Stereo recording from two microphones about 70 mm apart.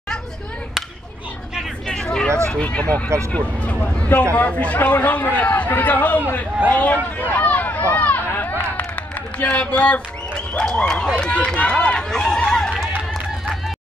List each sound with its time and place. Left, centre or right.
1.9 s vehicle: centre
2.5 s a man's voice: centre
7.2 s a sound: left
8.7 s run: left